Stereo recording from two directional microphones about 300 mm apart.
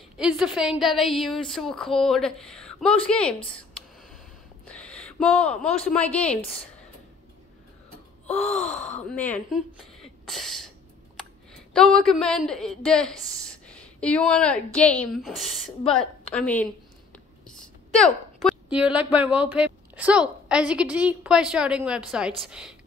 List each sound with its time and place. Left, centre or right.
0.2 s speech: centre
4.6 s a sound: centre
5.8 s speech: centre
8.5 s speech: left
9.1 s speech: centre
9.7 s a sound: centre
11.5 s a woman's voice: centre